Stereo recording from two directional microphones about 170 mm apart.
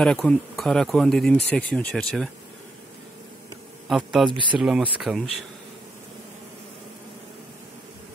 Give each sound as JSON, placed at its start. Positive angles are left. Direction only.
{"t": 0.0, "sound": "speech", "side_deg": 5}
{"t": 3.9, "sound": "speech", "side_deg": 0}
{"t": 4.3, "sound": "speech", "side_deg": -30}
{"t": 4.6, "sound": "speech", "side_deg": 0}